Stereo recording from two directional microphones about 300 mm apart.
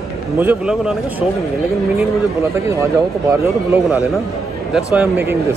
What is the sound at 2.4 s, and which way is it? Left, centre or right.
Speech, centre.